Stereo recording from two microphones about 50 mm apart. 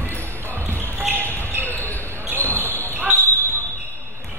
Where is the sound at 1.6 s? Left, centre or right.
Left.